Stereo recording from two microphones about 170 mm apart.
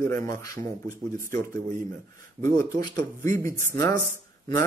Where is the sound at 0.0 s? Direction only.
15° left (ahead or behind).